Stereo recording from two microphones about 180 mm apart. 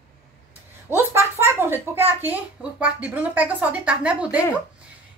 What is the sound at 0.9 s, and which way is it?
A woman's voice, 15° right (ahead or behind).